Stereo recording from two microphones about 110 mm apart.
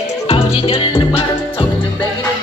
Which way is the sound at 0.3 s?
60° left (ahead or behind).